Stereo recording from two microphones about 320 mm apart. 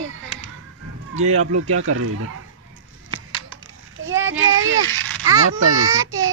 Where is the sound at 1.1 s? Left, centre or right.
Right.